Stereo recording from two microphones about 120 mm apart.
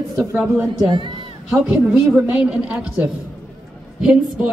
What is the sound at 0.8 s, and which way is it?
Speech, 45° right (ahead or behind).